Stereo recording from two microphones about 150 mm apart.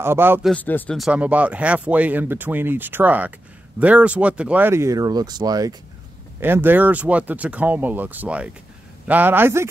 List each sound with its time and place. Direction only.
0.0 s speech: 15° right (ahead or behind)
0.6 s speech: 10° left (ahead or behind)
0.9 s speech: 5° right (ahead or behind); by 5.8 s 25° right (ahead or behind)
6.4 s speech: 15° right (ahead or behind)